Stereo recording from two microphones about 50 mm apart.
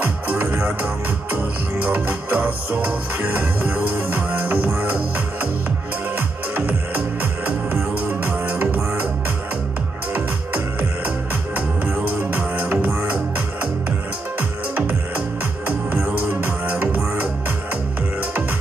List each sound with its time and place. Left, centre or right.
0.0 s music: right
10.1 s music: right
14.8 s music: right